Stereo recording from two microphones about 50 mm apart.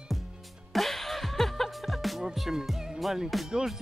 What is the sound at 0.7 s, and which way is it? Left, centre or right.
Music, centre.